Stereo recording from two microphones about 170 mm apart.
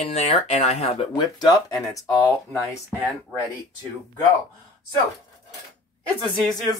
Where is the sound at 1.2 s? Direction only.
25° left (ahead or behind).